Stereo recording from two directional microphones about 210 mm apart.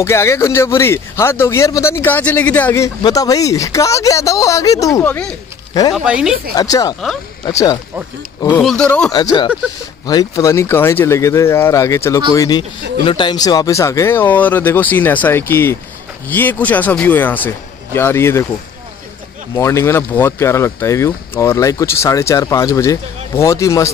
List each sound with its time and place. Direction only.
0.0 s speech: 15° left (ahead or behind)
5.9 s speech: 5° right (ahead or behind)
6.5 s speech: 15° left (ahead or behind)
8.4 s speech: 5° left (ahead or behind)
9.1 s speech: 20° left (ahead or behind)
19.5 s speech: 15° left (ahead or behind)